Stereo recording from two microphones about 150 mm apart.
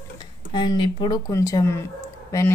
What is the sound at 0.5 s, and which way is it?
Speech, 30° left (ahead or behind).